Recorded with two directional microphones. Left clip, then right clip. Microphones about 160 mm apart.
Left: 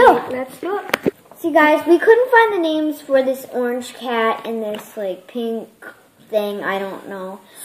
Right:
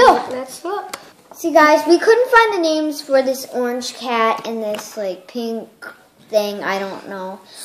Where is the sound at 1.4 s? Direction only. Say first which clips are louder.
Right 2 dB; 15° right (ahead or behind).